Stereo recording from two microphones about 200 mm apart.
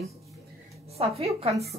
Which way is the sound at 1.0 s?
30° right (ahead or behind).